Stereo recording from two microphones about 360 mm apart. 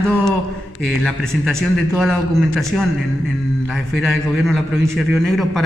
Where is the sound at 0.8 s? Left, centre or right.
Centre.